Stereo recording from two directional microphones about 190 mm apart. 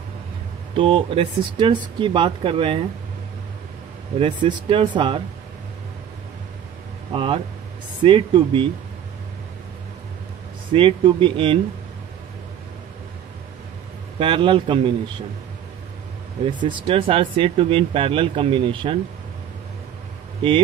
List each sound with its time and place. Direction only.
0.7 s speech: 25° right (ahead or behind)
4.2 s speech: 25° right (ahead or behind)
7.1 s speech: 30° right (ahead or behind)
10.7 s speech: 30° right (ahead or behind)
14.2 s speech: 25° right (ahead or behind)
16.4 s speech: 25° right (ahead or behind)